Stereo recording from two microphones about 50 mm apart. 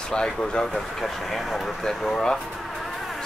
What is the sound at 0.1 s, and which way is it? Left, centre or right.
Speech, centre.